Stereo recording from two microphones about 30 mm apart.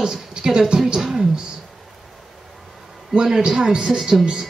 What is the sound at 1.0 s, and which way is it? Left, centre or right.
Speech, centre.